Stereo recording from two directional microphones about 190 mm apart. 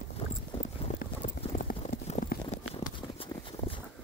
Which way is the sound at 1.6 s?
45° left (ahead or behind).